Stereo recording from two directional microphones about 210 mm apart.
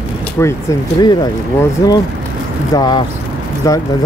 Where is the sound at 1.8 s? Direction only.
15° left (ahead or behind).